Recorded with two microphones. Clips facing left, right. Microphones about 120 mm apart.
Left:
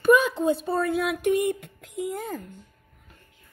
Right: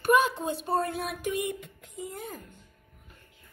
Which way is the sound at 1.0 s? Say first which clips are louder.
Left 8 dB; 65° left (ahead or behind).